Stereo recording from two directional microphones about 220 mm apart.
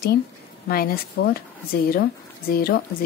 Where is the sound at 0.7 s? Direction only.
45° left (ahead or behind).